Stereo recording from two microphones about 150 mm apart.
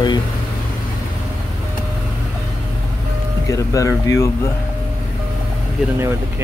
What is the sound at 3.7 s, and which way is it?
Speech, 20° left (ahead or behind).